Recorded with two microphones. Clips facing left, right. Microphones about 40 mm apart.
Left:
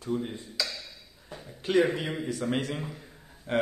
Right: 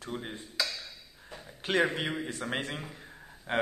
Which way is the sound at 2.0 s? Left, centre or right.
Right.